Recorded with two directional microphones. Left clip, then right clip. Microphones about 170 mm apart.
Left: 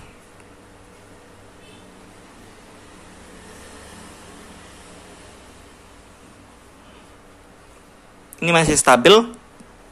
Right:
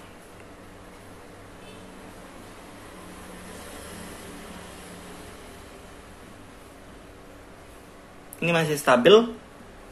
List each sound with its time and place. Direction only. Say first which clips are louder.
8.4 s speech: left 7 dB; 25° left (ahead or behind)